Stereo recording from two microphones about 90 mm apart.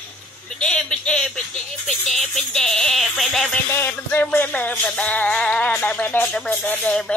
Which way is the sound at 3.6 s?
25° left (ahead or behind).